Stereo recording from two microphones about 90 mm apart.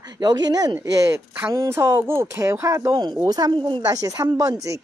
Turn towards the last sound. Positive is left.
turn(degrees=-40)  # may be behind; listen again after turning